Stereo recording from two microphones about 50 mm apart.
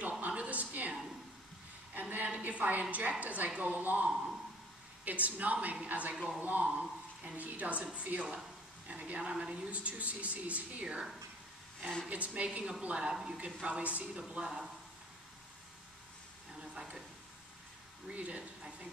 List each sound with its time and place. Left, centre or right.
0.3 s a sound: right
2.0 s a woman's voice: right
6.1 s speech: centre
6.4 s a woman's voice: right
12.1 s speech: right
13.7 s speech: right
16.6 s a sound: centre
18.1 s speech: right